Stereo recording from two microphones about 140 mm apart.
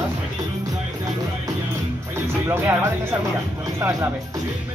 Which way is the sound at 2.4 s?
15° right (ahead or behind).